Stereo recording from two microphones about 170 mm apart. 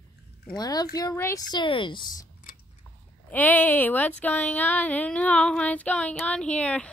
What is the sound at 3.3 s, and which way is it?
Speech, 10° left (ahead or behind).